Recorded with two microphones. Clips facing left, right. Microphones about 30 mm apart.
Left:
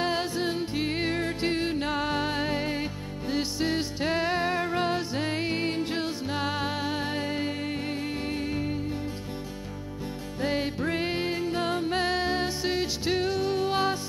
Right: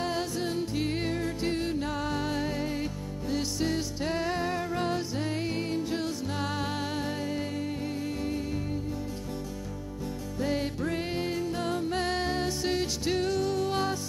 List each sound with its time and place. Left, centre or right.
0.0 s music: left
1.1 s music: left
7.1 s music: left
10.4 s music: left
12.1 s music: left